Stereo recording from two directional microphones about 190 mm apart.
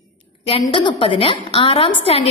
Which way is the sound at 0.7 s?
25° left (ahead or behind).